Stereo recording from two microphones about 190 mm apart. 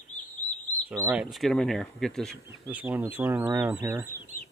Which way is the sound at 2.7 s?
10° right (ahead or behind).